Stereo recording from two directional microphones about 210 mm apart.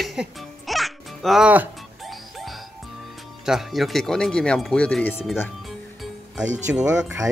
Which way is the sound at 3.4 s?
Centre (ahead or behind).